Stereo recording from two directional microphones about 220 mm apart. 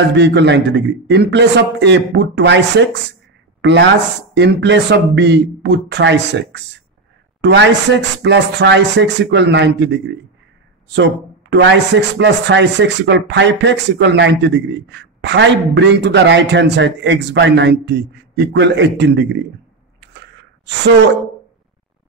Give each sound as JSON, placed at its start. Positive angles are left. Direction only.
{"t": 0.1, "sound": "speech", "side_deg": -50}
{"t": 4.4, "sound": "speech", "side_deg": -50}
{"t": 11.5, "sound": "speech", "side_deg": -50}